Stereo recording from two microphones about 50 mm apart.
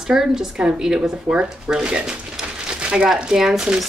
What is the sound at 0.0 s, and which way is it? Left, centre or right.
A woman's voice, centre.